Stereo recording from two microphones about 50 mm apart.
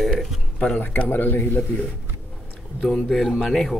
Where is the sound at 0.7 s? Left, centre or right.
Left.